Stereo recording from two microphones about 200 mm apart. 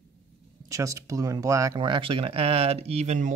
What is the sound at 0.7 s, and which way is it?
Speech, 15° right (ahead or behind).